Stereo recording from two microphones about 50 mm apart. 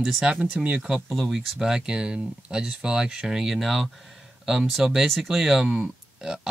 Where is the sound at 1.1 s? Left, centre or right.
Centre.